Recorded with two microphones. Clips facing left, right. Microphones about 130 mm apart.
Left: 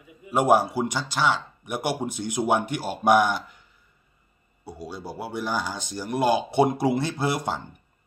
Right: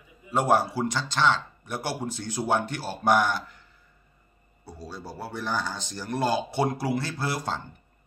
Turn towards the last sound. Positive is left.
turn(degrees=20)  # may be behind; listen again after turning